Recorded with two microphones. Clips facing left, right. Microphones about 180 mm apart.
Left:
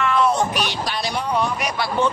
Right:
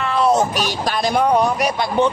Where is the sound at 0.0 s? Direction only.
35° right (ahead or behind).